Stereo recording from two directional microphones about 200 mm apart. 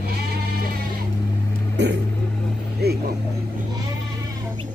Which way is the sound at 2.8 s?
55° right (ahead or behind).